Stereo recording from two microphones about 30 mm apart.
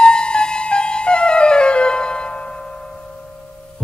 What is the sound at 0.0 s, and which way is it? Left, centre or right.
Music, left.